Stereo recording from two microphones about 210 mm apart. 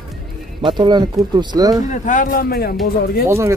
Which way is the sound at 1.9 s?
35° left (ahead or behind).